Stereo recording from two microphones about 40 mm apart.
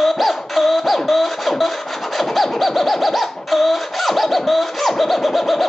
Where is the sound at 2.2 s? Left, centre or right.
Centre.